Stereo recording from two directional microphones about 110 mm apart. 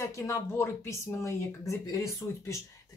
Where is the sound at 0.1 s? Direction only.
25° left (ahead or behind).